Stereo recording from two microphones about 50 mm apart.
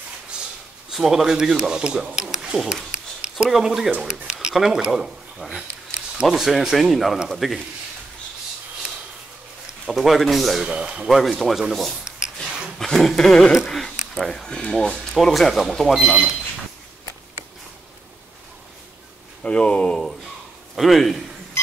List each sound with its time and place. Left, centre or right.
0.8 s speech: centre
9.8 s speech: centre
10.6 s speech: centre
12.7 s speech: centre
13.7 s a sound: centre
14.6 s speech: centre
15.9 s speech: centre
19.4 s speech: left
20.7 s speech: centre